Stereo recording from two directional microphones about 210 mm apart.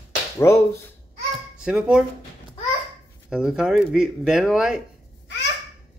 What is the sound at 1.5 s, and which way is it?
Speech, 5° right (ahead or behind).